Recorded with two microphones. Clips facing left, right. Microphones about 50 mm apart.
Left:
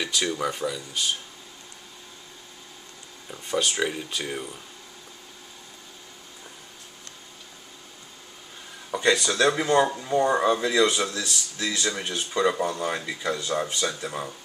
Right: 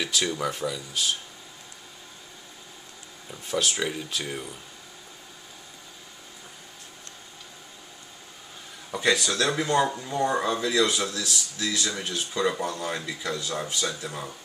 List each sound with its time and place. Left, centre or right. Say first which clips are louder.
0.0 s speech: left 1 dB; centre
3.3 s speech: left 1 dB; centre
8.9 s speech: left 2 dB; centre